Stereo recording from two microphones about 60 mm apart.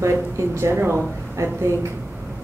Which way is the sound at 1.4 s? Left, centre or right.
Right.